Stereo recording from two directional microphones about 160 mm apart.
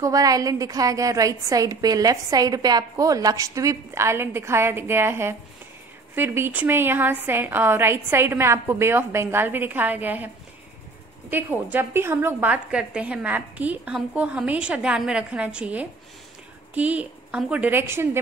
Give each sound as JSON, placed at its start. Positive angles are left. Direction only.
{"t": 0.0, "sound": "a woman's voice", "side_deg": -20}